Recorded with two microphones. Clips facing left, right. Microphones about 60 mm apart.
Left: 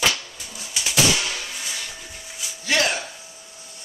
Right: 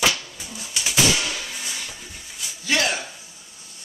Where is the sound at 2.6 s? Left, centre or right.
Left.